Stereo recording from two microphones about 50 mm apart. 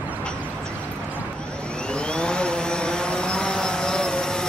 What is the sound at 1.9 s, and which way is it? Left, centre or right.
Vehicle, centre.